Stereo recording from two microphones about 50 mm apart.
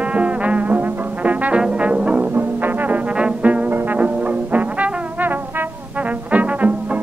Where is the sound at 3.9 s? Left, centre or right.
Right.